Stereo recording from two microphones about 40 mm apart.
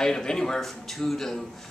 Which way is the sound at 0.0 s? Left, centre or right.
Centre.